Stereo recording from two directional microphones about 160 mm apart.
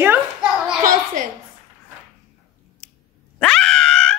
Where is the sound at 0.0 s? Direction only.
10° right (ahead or behind).